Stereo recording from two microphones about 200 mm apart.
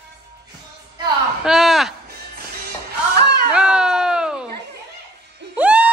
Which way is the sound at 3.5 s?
5° right (ahead or behind).